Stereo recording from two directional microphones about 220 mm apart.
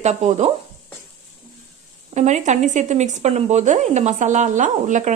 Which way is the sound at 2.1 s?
30° right (ahead or behind).